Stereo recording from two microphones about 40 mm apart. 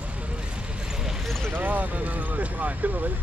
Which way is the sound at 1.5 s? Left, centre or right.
Right.